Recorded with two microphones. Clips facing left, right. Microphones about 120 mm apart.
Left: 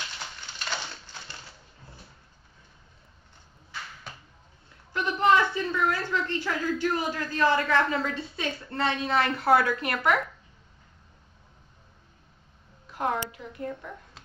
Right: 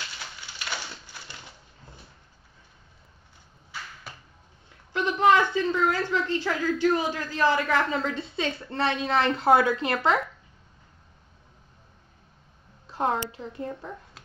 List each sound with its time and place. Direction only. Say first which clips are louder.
0.6 s crushing: left 1 dB; 10° right (ahead or behind)
4.1 s a sound: even; 5° right (ahead or behind)
4.9 s a woman's voice: right 2 dB; 20° right (ahead or behind)
12.8 s a woman's voice: right 2 dB; 30° right (ahead or behind)